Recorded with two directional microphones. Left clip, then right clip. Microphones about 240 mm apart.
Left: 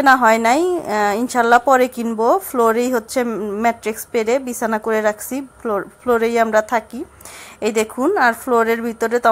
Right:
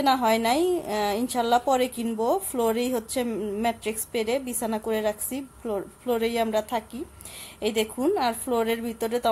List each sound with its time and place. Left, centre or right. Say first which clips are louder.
0.0 s a woman's voice: left 10 dB; centre
7.6 s a woman's voice: left 7 dB; left
8.0 s a woman's voice: left 11 dB; centre